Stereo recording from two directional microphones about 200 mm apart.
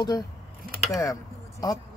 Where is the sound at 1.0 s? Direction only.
15° left (ahead or behind).